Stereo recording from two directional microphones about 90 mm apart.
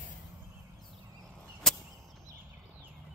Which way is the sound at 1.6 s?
5° left (ahead or behind).